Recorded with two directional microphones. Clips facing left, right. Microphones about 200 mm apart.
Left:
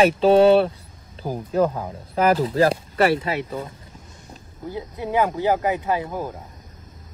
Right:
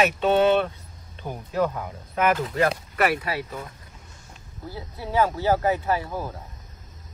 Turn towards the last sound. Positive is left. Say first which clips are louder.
# left 3 dB
turn(degrees=15)  # may be behind; listen again after turning